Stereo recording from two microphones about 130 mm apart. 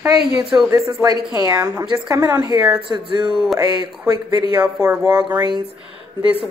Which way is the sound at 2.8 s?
40° right (ahead or behind).